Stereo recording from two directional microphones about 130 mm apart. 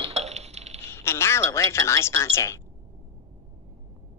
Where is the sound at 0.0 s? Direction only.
55° right (ahead or behind).